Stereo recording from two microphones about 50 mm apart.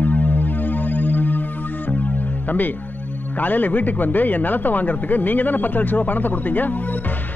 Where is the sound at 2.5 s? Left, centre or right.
Left.